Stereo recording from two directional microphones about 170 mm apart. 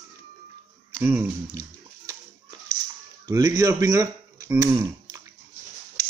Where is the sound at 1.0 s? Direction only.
10° right (ahead or behind).